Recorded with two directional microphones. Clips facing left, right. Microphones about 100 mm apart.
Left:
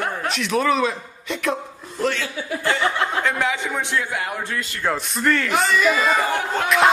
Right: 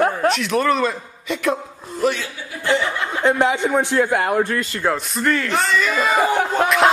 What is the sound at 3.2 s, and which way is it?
A man's voice, 30° right (ahead or behind).